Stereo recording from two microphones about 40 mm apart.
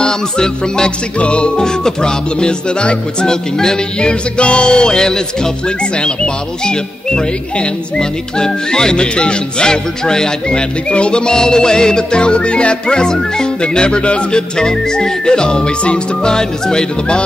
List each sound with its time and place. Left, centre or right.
0.0 s music: centre
1.6 s music: centre